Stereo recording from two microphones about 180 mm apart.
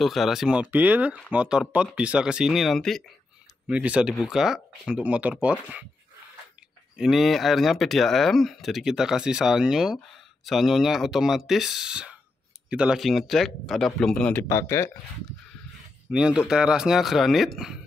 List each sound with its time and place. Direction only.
0.0 s speech: centre (ahead or behind)
7.0 s speech: centre (ahead or behind); by 14.9 s 15° left (ahead or behind)
16.1 s speech: 5° right (ahead or behind)